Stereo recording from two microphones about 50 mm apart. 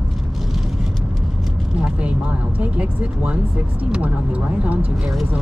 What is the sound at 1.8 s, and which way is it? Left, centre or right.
Speech, right.